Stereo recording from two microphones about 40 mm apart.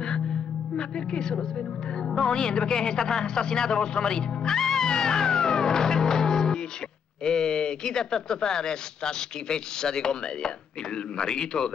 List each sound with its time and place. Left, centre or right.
0.7 s speech: left